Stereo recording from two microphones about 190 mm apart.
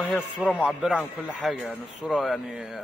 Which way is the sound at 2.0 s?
Centre (ahead or behind).